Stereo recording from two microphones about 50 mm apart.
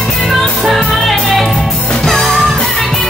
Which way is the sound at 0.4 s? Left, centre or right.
Centre.